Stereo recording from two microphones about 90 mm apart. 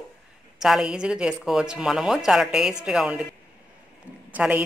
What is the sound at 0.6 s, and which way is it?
Speech, 5° right (ahead or behind).